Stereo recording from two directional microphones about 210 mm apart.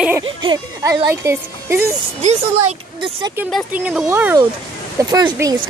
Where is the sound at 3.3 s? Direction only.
10° right (ahead or behind).